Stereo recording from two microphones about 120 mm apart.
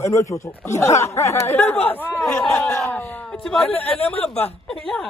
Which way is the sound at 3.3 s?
5° left (ahead or behind).